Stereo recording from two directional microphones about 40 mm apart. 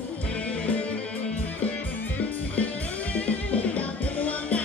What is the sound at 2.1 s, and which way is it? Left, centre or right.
Music, left.